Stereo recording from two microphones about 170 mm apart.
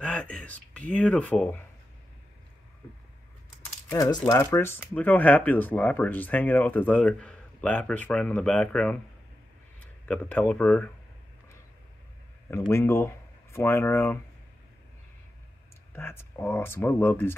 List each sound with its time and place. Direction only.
0.0 s speech: 5° left (ahead or behind)
3.9 s speech: 25° left (ahead or behind); by 8.9 s 5° left (ahead or behind)
10.0 s speech: 10° left (ahead or behind)
12.4 s speech: 15° left (ahead or behind)
15.9 s speech: 15° left (ahead or behind)